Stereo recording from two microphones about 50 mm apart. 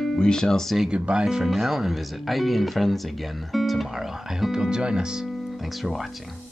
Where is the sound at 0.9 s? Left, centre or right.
Centre.